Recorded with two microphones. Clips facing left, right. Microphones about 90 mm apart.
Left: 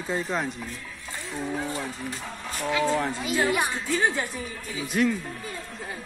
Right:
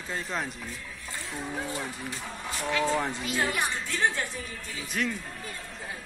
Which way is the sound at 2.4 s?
5° right (ahead or behind).